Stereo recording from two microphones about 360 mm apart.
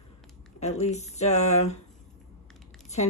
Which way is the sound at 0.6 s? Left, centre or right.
Centre.